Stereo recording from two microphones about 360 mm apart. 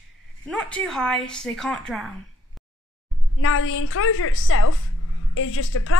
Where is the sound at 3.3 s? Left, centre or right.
Left.